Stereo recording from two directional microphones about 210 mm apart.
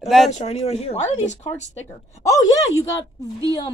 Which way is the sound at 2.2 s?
15° left (ahead or behind).